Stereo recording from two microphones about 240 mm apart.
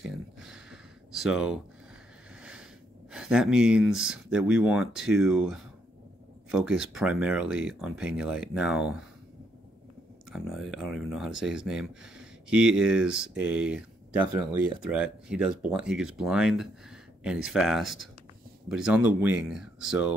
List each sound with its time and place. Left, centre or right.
0.4 s gasp: centre
3.1 s speech: centre
10.3 s speech: centre
14.2 s speech: centre
14.8 s speech: centre